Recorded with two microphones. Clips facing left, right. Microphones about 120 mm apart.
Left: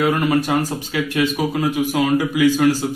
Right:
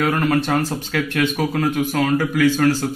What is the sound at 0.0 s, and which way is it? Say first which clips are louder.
A man's voice: left 1 dB; 5° left (ahead or behind).